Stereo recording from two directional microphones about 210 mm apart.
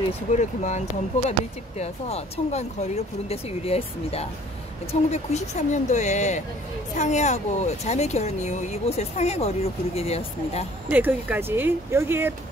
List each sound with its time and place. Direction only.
0.4 s speech: 35° left (ahead or behind)
10.9 s speech: 5° right (ahead or behind)